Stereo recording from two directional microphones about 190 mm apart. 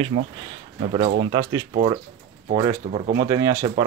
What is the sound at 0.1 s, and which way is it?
Speech, 35° right (ahead or behind).